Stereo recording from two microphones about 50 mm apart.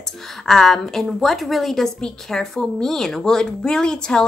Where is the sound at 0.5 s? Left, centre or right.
Centre.